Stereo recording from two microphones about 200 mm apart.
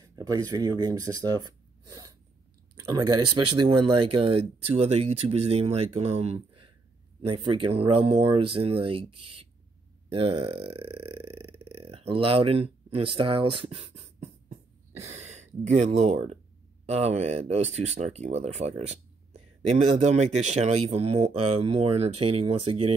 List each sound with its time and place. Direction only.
0.0 s speech: 15° right (ahead or behind)
2.8 s speech: 20° right (ahead or behind)